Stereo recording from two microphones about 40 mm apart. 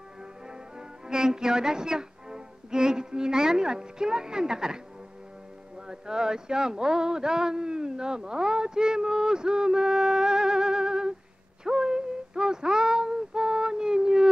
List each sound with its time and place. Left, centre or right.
0.5 s speech: centre
5.9 s speech: centre
11.6 s female singing: centre